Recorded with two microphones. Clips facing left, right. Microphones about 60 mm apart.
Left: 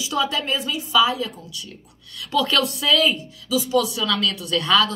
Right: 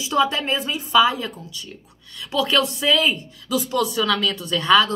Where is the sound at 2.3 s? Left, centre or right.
Centre.